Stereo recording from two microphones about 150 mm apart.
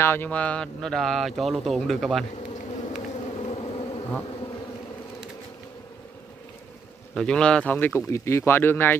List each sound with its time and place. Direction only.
0.0 s speech: 15° left (ahead or behind)
2.3 s bee: 50° left (ahead or behind)
7.2 s speech: 5° left (ahead or behind)